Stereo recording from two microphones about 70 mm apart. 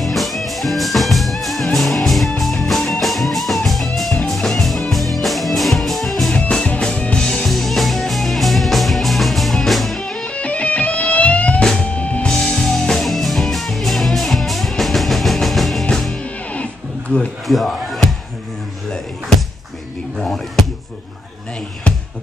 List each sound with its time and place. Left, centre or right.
0.0 s music: centre
6.5 s music: centre
7.4 s music: centre
11.6 s music: centre
12.0 s music: centre
12.3 s music: centre
17.5 s music: centre
20.2 s a sound: centre